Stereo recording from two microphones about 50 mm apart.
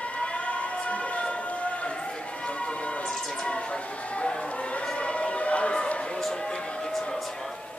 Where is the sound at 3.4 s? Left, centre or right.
Left.